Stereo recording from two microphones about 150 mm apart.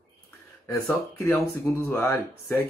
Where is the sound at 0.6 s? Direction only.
15° left (ahead or behind).